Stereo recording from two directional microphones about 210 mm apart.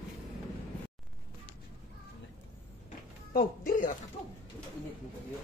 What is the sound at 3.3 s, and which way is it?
Music, 40° left (ahead or behind).